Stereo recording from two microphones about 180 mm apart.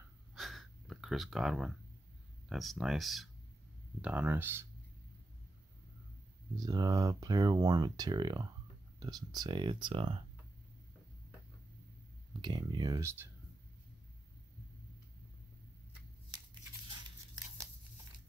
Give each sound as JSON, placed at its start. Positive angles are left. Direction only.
{"t": 0.3, "sound": "a sound", "side_deg": 0}
{"t": 2.5, "sound": "speech", "side_deg": 0}
{"t": 6.5, "sound": "speech", "side_deg": -20}
{"t": 12.4, "sound": "speech", "side_deg": -25}